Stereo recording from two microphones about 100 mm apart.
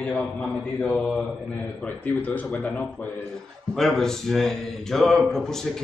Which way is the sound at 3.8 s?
5° left (ahead or behind).